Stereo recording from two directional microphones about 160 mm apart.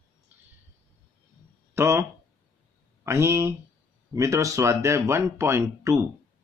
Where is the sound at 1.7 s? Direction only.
15° right (ahead or behind).